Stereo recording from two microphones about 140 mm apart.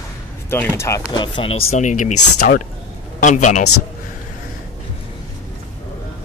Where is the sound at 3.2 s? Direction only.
60° left (ahead or behind).